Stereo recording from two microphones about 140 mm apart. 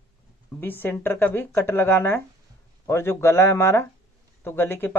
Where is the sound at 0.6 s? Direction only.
15° left (ahead or behind).